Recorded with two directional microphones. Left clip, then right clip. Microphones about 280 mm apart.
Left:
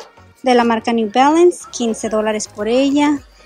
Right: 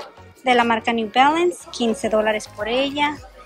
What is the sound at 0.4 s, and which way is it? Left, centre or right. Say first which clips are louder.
A woman's voice: left 3 dB; centre.